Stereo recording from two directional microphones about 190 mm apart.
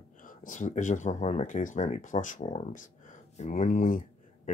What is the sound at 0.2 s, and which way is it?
Speech, 45° left (ahead or behind).